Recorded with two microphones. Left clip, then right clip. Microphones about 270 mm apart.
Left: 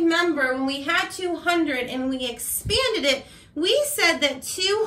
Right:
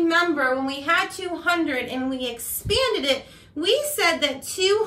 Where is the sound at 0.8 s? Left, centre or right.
Centre.